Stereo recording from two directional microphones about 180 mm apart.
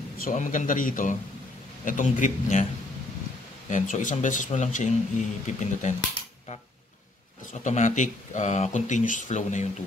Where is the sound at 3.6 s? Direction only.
45° left (ahead or behind).